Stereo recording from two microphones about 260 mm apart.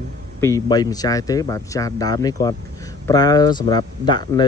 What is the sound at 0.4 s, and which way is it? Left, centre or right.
Speech, centre.